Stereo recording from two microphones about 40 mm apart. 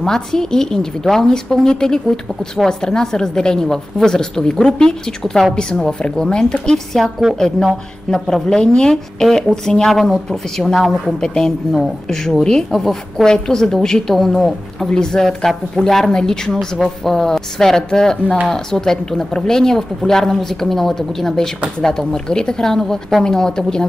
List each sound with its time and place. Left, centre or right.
0.0 s a woman's voice: centre
11.1 s speech: centre
15.2 s a woman's voice: centre
16.1 s speech: centre